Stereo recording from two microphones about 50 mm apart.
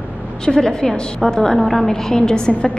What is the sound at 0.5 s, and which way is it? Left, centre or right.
A woman's voice, centre.